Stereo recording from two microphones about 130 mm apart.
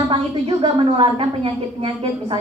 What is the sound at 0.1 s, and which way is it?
Speech, 35° right (ahead or behind).